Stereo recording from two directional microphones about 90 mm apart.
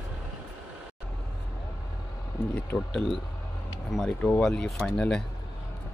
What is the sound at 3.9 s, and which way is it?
Speech, 5° left (ahead or behind).